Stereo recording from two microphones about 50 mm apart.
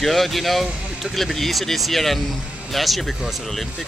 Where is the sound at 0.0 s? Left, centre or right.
Centre.